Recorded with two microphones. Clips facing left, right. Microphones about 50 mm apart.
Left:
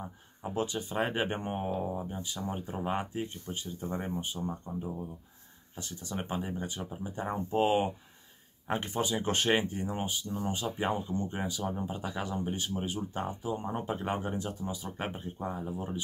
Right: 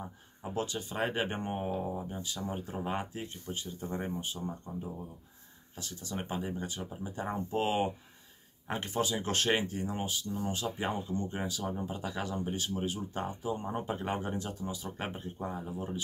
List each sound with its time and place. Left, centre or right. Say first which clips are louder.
0.0 s speech: left 2 dB; centre
5.8 s speech: left 1 dB; centre
9.1 s speech: left 4 dB; centre
9.8 s speech: left 1 dB; left
10.8 s speech: left 5 dB; centre
11.1 s speech: left 1 dB; left; by 14.0 s centre
14.0 s speech: left 1 dB; centre